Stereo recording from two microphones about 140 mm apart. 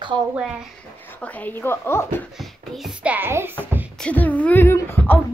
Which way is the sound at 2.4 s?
Centre (ahead or behind).